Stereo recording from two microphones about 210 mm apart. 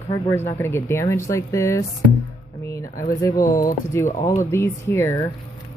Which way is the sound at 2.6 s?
15° left (ahead or behind).